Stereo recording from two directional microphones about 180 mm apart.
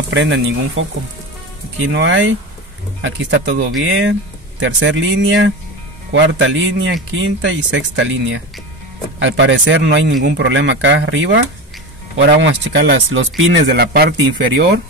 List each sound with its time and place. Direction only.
0.1 s speech: 85° right
1.9 s speech: 85° right
12.2 s speech: 75° right (ahead or behind); by 14.1 s 60° right (ahead or behind)